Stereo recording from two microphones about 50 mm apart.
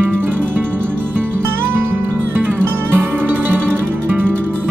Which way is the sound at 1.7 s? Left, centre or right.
Right.